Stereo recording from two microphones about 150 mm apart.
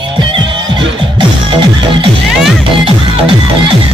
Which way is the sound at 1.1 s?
35° right (ahead or behind).